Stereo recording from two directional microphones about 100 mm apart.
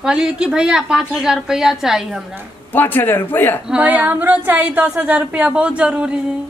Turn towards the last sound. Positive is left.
turn(degrees=-10)  # may be behind; listen again after turning